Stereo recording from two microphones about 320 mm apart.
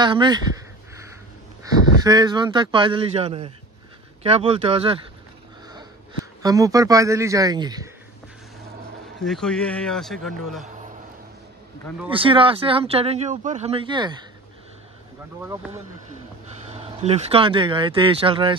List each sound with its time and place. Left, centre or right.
0.0 s speech: centre
1.6 s speech: centre
6.4 s speech: centre
9.2 s a man's voice: centre
12.1 s speech: centre
15.4 s speech: centre
16.7 s speech: centre